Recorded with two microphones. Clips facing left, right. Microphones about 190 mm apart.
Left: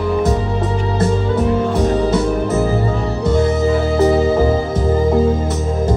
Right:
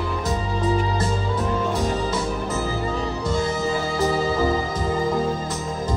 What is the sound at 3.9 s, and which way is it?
Music, 60° left (ahead or behind).